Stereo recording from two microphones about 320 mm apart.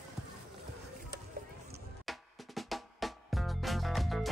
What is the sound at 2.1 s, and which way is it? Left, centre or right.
Music, centre.